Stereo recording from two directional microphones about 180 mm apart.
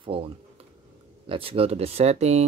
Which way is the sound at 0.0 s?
30° right (ahead or behind).